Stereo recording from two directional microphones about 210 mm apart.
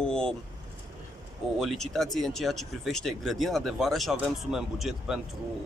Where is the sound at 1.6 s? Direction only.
Centre (ahead or behind).